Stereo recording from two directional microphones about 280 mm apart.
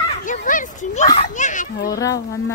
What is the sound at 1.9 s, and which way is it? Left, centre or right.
Speech, centre.